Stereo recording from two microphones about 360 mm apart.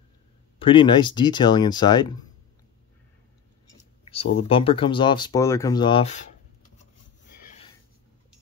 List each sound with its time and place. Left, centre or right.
0.6 s speech: centre
4.0 s speech: centre